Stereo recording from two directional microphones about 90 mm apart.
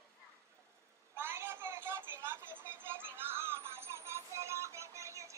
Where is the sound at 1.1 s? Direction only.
25° right (ahead or behind).